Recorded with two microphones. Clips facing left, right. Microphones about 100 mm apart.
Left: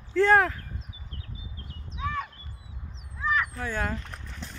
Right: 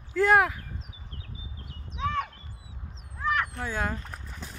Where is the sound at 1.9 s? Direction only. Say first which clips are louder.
Right 3 dB; 65° right (ahead or behind).